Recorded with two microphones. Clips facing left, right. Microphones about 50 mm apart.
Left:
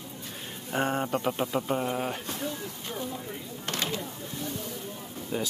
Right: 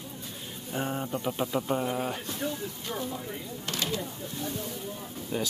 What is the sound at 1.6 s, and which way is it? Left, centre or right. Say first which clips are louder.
Speech: even; centre.